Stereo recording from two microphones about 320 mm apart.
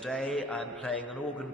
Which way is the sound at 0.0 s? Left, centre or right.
Centre.